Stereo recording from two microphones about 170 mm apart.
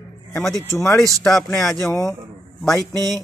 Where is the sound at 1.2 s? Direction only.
Centre (ahead or behind).